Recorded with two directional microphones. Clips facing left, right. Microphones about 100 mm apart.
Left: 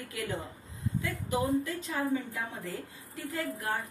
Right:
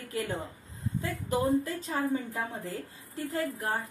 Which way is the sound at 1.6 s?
35° right (ahead or behind).